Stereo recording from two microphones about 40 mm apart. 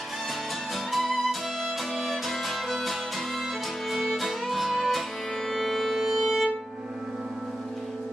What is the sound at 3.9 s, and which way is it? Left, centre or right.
Music, centre.